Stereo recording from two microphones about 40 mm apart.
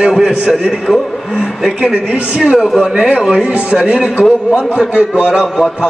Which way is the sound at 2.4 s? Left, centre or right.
Right.